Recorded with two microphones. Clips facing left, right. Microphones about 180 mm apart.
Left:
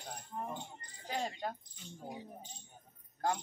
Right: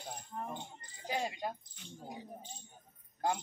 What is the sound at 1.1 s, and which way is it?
Speech, 10° right (ahead or behind).